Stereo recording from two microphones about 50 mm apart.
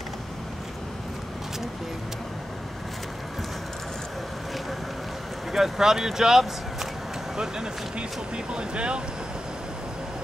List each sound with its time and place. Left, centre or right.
5.5 s speech: centre